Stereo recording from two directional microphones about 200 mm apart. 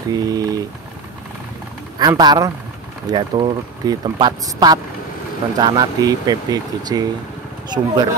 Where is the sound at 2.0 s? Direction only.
20° right (ahead or behind).